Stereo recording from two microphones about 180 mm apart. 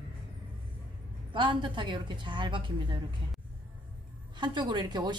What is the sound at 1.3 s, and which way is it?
Speech, 25° right (ahead or behind).